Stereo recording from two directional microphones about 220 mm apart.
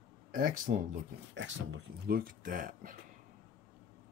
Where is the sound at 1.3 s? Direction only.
55° right (ahead or behind); by 2.9 s 40° right (ahead or behind).